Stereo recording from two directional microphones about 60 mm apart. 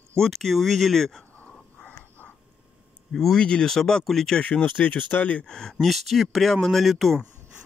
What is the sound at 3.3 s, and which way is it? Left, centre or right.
Speech, centre.